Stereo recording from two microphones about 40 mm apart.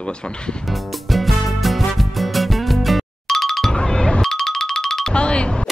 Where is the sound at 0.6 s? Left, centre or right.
Centre.